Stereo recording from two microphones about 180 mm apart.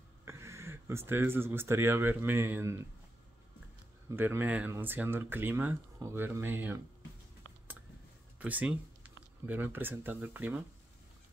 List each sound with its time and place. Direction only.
0.2 s speech: 15° right (ahead or behind)
4.1 s speech: 10° right (ahead or behind)
8.4 s speech: 10° right (ahead or behind)